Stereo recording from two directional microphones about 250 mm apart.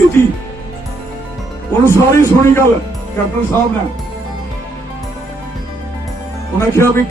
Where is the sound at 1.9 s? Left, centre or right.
Centre.